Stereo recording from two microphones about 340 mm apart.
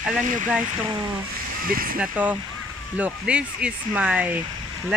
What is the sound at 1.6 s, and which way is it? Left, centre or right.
Speech, right.